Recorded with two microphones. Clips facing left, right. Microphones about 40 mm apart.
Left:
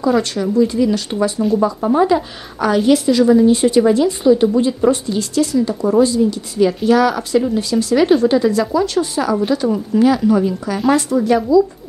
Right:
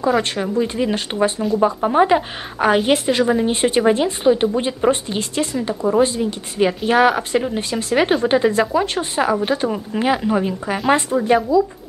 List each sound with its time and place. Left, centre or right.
0.2 s speech: right